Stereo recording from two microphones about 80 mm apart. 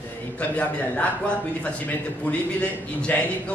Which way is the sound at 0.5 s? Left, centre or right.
Centre.